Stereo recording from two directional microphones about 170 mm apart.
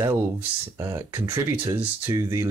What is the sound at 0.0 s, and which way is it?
Speech, 15° right (ahead or behind).